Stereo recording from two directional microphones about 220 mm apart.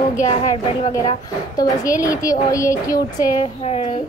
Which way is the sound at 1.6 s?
15° left (ahead or behind).